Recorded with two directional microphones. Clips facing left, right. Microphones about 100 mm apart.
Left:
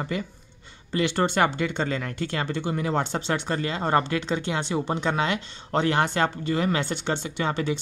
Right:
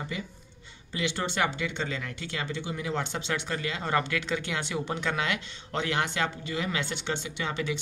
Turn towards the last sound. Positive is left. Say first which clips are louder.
# left 5 dB
turn(degrees=40)  # may be behind; listen again after turning